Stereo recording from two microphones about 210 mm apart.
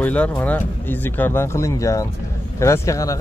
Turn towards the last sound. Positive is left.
turn(degrees=15)  # may be behind; listen again after turning